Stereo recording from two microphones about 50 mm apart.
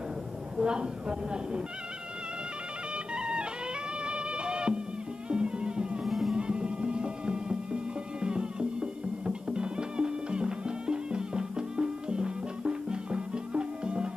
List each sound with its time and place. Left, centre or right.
0.6 s speech: centre
3.2 s music: centre
6.0 s music: centre
6.3 s music: centre